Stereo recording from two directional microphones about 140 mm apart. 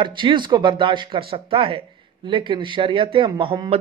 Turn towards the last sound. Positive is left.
turn(degrees=-35)  # may be behind; listen again after turning